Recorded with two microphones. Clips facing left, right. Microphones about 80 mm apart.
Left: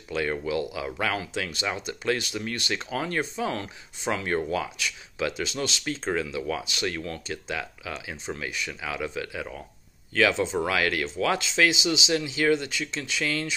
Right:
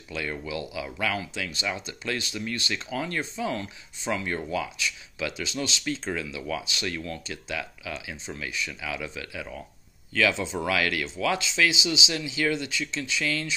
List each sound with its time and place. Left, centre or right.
0.1 s speech: left